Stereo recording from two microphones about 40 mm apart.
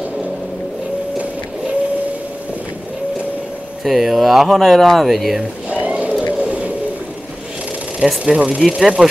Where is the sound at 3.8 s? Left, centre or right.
Centre.